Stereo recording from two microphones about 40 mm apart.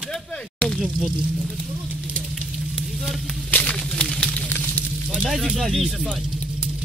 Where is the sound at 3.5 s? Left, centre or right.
Left.